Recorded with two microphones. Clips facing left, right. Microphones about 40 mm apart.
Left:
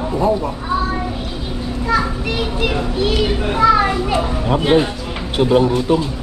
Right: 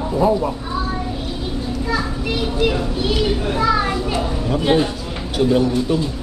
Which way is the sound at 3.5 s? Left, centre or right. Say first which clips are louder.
Left 7 dB; left.